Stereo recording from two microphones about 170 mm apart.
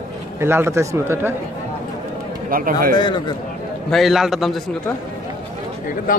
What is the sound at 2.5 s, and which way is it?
Speech, 55° right (ahead or behind).